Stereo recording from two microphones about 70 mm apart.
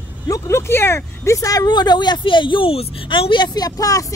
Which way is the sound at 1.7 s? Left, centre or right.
Left.